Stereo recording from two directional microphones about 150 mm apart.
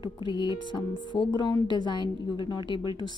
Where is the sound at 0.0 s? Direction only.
30° left (ahead or behind).